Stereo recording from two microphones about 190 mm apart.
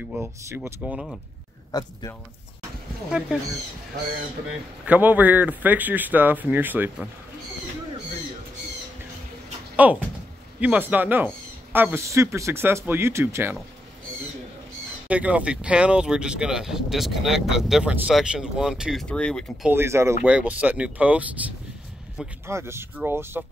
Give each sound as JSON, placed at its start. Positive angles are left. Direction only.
{"t": 0.1, "sound": "speech", "side_deg": -10}
{"t": 0.9, "sound": "speech", "side_deg": 0}
{"t": 1.7, "sound": "speech", "side_deg": 20}
{"t": 3.1, "sound": "speech", "side_deg": -5}
{"t": 4.8, "sound": "speech", "side_deg": -10}
{"t": 9.8, "sound": "speech", "side_deg": -10}
{"t": 15.0, "sound": "speech", "side_deg": -5}
{"t": 19.7, "sound": "speech", "side_deg": -15}
{"t": 22.5, "sound": "speech", "side_deg": -15}